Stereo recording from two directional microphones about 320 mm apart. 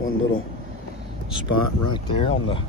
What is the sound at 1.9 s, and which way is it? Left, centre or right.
Speech, centre.